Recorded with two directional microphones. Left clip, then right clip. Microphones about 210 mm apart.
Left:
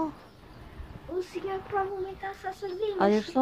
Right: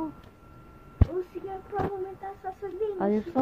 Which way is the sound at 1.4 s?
30° right (ahead or behind).